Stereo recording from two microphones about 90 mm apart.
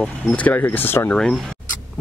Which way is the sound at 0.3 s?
15° left (ahead or behind).